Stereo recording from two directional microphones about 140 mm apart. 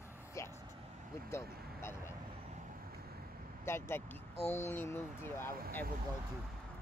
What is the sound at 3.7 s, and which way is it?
Speech, 15° left (ahead or behind).